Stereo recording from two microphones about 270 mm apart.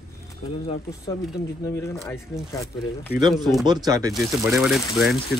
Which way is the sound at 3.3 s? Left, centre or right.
Centre.